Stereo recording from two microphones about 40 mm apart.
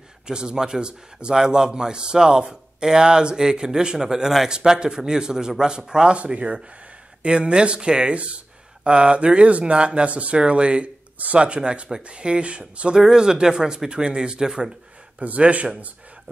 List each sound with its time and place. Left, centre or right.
0.3 s a man's voice: centre
13.0 s speech: centre
15.1 s speech: right